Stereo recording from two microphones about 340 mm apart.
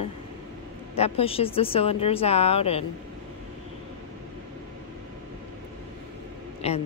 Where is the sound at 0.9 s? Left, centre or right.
Centre.